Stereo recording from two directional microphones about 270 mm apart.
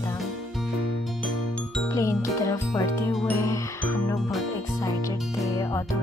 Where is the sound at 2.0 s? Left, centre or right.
Centre.